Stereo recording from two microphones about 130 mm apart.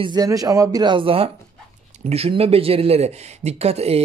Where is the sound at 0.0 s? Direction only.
30° right (ahead or behind).